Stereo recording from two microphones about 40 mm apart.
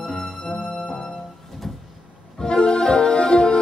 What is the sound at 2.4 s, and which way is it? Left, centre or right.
Music, left.